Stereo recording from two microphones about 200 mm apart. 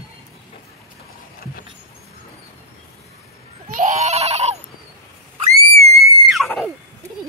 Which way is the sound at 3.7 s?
35° right (ahead or behind).